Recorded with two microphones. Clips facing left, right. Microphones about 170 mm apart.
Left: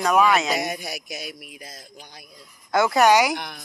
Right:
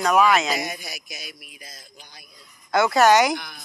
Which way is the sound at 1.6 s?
35° left (ahead or behind).